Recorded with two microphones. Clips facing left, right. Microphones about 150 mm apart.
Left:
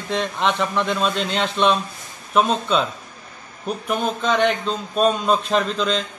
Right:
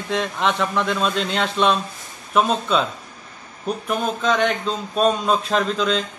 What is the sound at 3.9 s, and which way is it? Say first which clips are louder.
A man's voice: even; centre (ahead or behind).